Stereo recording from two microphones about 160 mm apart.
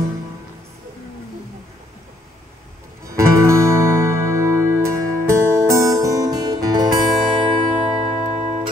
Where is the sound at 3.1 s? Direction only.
20° right (ahead or behind).